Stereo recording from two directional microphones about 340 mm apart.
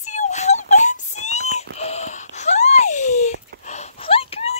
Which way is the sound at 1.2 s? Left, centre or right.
Centre.